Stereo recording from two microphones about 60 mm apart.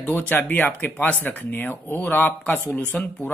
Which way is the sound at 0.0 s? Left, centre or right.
Left.